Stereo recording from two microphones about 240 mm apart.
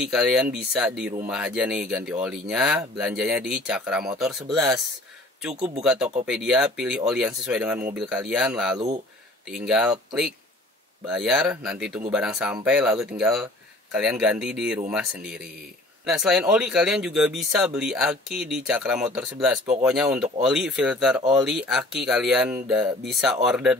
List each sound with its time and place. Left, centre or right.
0.0 s speech: centre